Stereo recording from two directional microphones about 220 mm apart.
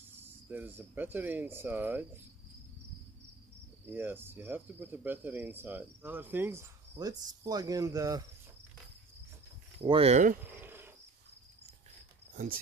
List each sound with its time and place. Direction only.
0.5 s speech: 10° right (ahead or behind)
3.8 s speech: 10° right (ahead or behind)
9.8 s speech: 25° right (ahead or behind)
10.4 s insect: 10° right (ahead or behind)